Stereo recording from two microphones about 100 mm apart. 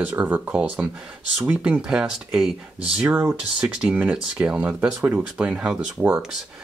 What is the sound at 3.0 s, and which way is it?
Speech, 20° right (ahead or behind).